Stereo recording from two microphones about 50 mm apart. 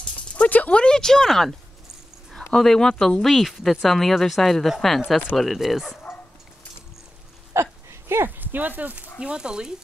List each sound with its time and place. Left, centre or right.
0.5 s speech: left; by 1.5 s centre
2.5 s speech: centre
3.2 s speech: centre
7.5 s speech: right
8.4 s speech: right
9.2 s speech: centre